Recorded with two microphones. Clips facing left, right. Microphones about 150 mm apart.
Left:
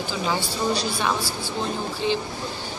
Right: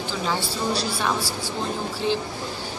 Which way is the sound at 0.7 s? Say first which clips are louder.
Even; 5° right (ahead or behind).